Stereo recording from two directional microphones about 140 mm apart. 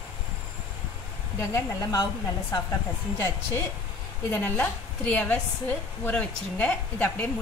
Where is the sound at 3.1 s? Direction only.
15° left (ahead or behind).